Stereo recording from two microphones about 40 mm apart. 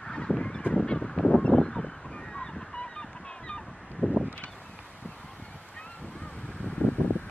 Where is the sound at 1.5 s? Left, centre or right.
Centre.